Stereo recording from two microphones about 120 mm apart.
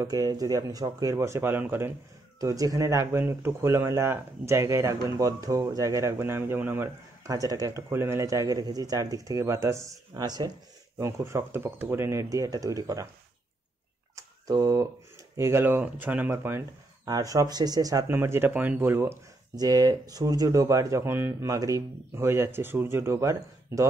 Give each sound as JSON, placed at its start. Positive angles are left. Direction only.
{"t": 0.0, "sound": "speech", "side_deg": -30}
{"t": 2.4, "sound": "speech", "side_deg": -30}
{"t": 11.0, "sound": "speech", "side_deg": -25}
{"t": 14.1, "sound": "a sound", "side_deg": -30}
{"t": 15.3, "sound": "speech", "side_deg": -20}
{"t": 17.0, "sound": "speech", "side_deg": -30}
{"t": 18.0, "sound": "speech", "side_deg": -20}
{"t": 19.5, "sound": "speech", "side_deg": -35}